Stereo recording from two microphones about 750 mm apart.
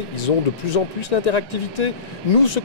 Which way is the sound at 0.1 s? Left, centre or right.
Left.